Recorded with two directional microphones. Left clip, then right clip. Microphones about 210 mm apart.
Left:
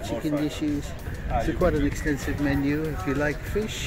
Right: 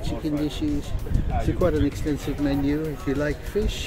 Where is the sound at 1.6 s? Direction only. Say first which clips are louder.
Right 3 dB; 5° right (ahead or behind).